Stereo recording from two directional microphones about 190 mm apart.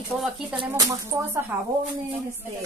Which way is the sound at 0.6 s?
20° right (ahead or behind).